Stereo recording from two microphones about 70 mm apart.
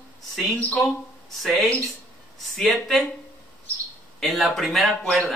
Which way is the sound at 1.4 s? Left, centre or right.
Centre.